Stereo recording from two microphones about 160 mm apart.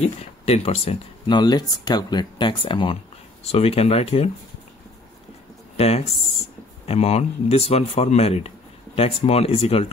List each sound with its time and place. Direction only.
0.2 s speech: 40° left (ahead or behind)
5.8 s speech: 40° left (ahead or behind)